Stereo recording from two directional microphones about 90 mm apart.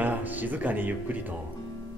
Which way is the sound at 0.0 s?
20° right (ahead or behind).